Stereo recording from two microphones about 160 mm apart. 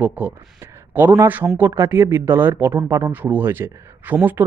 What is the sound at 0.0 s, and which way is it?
Speech, 10° right (ahead or behind).